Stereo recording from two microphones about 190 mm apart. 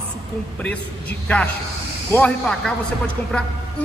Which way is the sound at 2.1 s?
5° left (ahead or behind).